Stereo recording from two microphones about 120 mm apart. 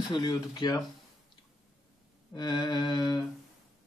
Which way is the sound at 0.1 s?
35° left (ahead or behind).